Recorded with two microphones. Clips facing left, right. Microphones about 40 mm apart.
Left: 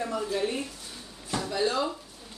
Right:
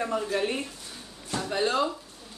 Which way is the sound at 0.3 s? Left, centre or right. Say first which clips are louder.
Right 1 dB; right.